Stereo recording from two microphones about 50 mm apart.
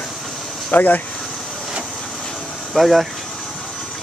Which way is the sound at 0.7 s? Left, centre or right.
Left.